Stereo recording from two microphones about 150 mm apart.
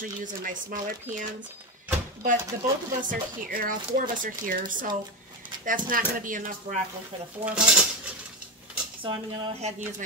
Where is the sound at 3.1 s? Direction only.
70° right (ahead or behind).